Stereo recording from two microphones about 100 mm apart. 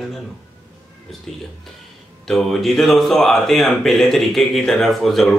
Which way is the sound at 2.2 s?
Centre (ahead or behind).